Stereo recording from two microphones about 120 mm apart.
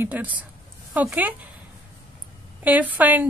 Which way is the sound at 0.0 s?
15° right (ahead or behind).